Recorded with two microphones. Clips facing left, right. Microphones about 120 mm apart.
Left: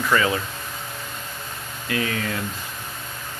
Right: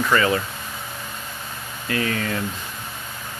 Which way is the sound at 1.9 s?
5° left (ahead or behind).